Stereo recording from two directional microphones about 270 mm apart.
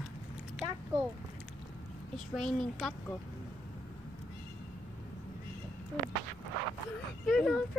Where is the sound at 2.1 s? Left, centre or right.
Centre.